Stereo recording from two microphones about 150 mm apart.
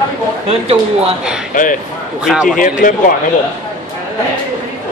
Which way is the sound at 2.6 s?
60° left (ahead or behind).